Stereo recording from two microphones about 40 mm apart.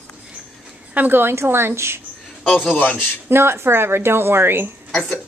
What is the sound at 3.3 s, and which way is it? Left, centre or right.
A woman's voice, right.